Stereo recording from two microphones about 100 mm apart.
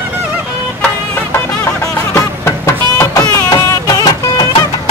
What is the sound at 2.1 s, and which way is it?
Music, 25° left (ahead or behind).